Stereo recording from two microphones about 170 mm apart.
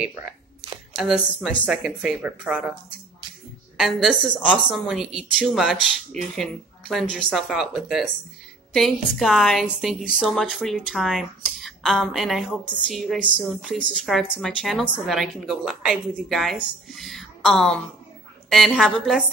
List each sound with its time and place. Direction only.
0.9 s a woman's voice: centre (ahead or behind)
3.7 s a woman's voice: centre (ahead or behind)